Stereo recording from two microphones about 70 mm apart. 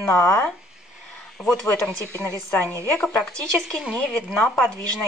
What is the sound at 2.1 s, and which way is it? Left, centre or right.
Speech, right.